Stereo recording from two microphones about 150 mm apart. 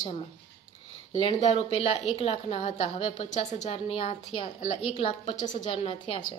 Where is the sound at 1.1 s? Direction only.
40° left (ahead or behind).